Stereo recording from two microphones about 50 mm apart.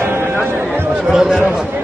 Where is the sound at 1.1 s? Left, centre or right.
Centre.